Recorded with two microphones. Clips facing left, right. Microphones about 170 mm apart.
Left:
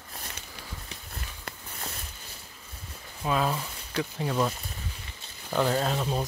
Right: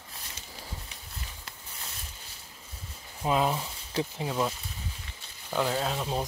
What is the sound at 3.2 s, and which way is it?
Speech, 20° right (ahead or behind).